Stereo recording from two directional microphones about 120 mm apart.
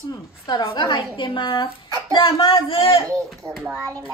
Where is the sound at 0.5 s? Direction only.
40° left (ahead or behind).